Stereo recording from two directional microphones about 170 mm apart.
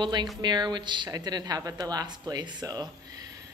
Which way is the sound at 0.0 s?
25° right (ahead or behind).